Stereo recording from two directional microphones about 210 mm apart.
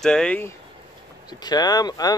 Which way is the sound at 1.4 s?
20° left (ahead or behind).